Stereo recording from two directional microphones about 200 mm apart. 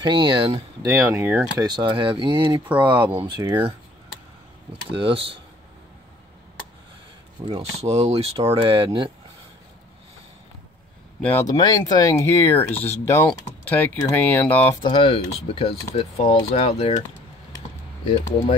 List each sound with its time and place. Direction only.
0.0 s speech: 25° right (ahead or behind)
4.9 s speech: 25° right (ahead or behind)
7.4 s speech: 30° right (ahead or behind)
11.2 s speech: 15° left (ahead or behind)
12.5 s speech: 30° left (ahead or behind)
13.0 s speech: 10° left (ahead or behind)
14.8 s speech: 25° left (ahead or behind)